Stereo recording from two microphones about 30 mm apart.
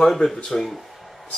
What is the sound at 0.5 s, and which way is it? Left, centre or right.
Speech, left.